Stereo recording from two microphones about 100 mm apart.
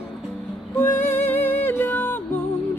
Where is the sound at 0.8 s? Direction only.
20° left (ahead or behind).